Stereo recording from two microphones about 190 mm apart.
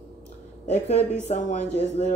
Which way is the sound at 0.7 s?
35° left (ahead or behind).